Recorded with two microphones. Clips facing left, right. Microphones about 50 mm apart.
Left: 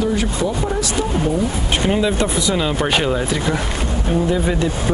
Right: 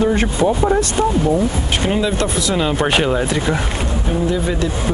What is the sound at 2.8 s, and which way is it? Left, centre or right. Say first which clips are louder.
Speech: right 2 dB; centre.